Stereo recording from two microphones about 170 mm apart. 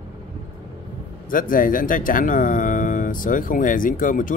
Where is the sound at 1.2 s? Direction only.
55° left (ahead or behind).